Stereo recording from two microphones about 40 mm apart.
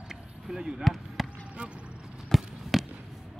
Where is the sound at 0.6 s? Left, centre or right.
Centre.